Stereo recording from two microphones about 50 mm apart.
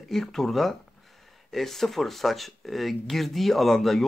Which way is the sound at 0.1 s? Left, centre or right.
Centre.